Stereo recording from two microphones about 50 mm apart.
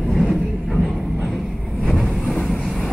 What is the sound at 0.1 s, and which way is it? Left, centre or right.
Vehicle, centre.